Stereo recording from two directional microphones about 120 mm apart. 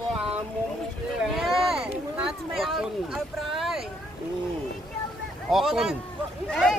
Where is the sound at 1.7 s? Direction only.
5° right (ahead or behind).